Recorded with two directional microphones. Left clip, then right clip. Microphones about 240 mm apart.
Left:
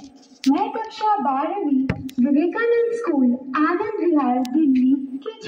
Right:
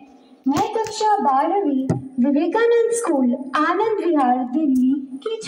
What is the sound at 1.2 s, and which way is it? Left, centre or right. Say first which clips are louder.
A woman's voice: right 4 dB; right.